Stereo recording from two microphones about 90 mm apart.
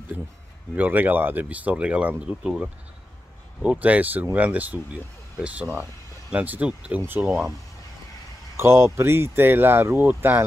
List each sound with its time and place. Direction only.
0.7 s speech: 20° right (ahead or behind)
8.5 s speech: 30° right (ahead or behind)